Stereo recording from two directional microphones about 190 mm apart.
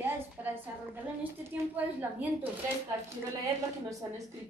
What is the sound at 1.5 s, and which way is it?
Speech, 10° right (ahead or behind).